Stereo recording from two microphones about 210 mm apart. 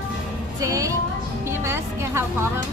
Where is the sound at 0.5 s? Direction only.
15° right (ahead or behind).